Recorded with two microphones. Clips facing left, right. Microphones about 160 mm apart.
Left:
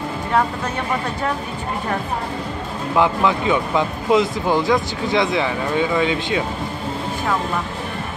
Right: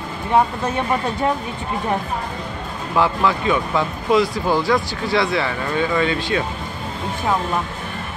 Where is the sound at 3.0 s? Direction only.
15° left (ahead or behind).